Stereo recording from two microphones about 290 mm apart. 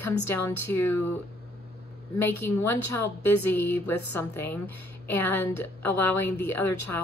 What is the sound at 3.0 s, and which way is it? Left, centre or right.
Speech, left.